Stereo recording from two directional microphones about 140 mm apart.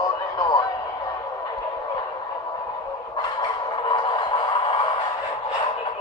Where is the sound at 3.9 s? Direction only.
30° left (ahead or behind).